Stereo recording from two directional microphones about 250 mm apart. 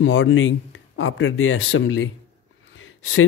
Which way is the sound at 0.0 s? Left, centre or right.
Left.